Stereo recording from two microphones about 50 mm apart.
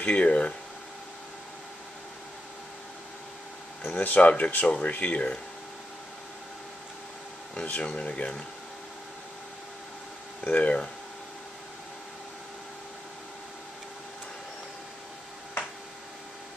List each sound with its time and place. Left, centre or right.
0.0 s speech: left
3.8 s speech: left
7.6 s speech: left
10.4 s speech: left